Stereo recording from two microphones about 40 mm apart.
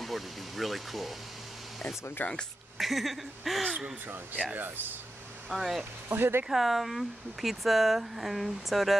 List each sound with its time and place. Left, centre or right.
0.0 s speech: centre
2.2 s speech: left
2.8 s speech: centre
5.5 s speech: centre
6.0 s speech: right
6.5 s speech: centre